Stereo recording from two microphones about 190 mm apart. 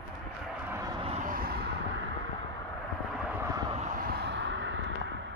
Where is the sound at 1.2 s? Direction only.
50° right (ahead or behind).